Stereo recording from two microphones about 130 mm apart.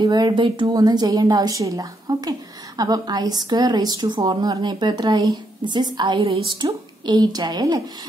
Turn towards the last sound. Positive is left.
turn(degrees=-30)  # may be behind; listen again after turning